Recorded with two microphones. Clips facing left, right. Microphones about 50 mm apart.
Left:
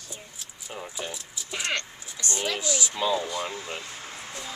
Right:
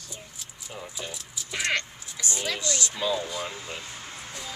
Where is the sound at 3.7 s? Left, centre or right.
Centre.